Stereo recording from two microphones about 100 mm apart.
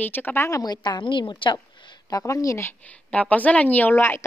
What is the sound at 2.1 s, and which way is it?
Speech, 35° left (ahead or behind).